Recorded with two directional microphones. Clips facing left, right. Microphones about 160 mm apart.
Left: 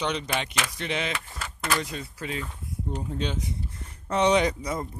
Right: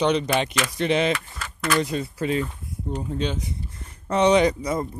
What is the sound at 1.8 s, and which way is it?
Speech, 35° right (ahead or behind).